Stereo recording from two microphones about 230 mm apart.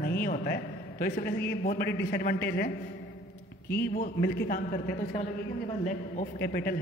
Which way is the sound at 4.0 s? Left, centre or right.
Left.